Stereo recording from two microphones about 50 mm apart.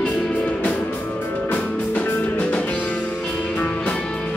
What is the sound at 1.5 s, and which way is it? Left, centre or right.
Music, left.